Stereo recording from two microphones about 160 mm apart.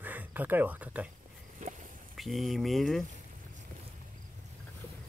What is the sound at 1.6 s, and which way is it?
Walk, 50° right (ahead or behind).